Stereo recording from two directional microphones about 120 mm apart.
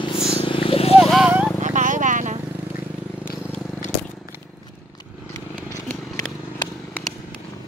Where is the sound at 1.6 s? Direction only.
90° right.